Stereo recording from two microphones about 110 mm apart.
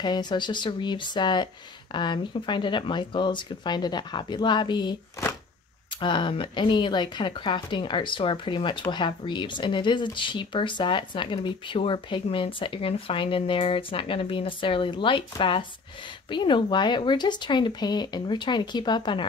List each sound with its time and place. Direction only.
0.0 s speech: 40° left (ahead or behind)
5.9 s speech: 45° left (ahead or behind)